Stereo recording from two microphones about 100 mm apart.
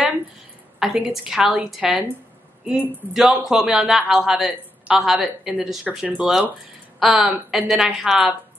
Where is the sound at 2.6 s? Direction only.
15° right (ahead or behind).